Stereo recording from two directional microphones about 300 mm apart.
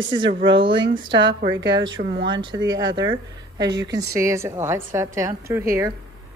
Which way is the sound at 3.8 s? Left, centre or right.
Centre.